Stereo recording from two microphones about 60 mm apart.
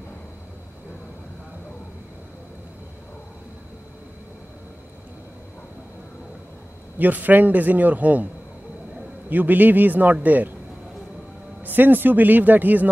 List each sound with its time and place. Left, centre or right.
7.0 s a man's voice: right
9.3 s a man's voice: right
11.6 s a man's voice: right